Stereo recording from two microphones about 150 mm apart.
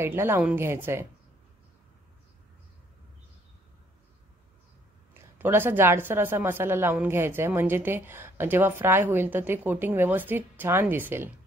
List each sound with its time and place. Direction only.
0.0 s a woman's voice: 15° right (ahead or behind)
5.4 s a woman's voice: 15° right (ahead or behind)